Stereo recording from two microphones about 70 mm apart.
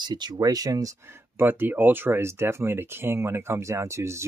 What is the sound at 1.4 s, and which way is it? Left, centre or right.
Speech, right.